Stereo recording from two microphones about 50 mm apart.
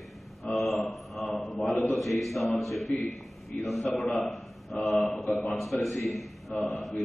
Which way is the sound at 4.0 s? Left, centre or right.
Left.